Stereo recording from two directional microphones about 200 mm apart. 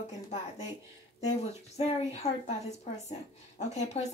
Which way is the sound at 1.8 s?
30° left (ahead or behind).